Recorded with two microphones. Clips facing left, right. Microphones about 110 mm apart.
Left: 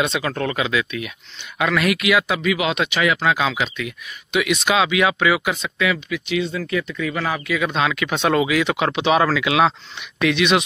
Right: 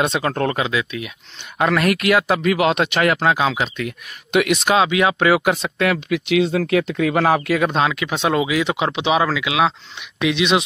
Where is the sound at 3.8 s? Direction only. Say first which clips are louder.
Right 2 dB; 50° right (ahead or behind); by 5.1 s 30° right (ahead or behind).